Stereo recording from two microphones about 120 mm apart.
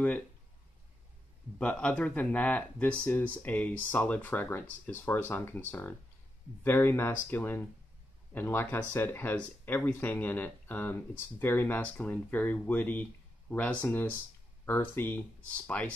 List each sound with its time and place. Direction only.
1.6 s speech: 10° left (ahead or behind)